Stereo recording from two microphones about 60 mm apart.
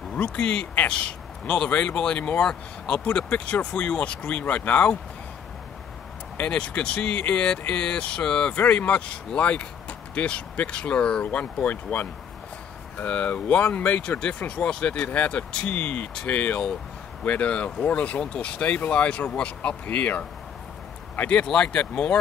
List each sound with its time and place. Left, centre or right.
0.1 s speech: left
6.3 s speech: left
8.5 s speech: left
21.5 s speech: centre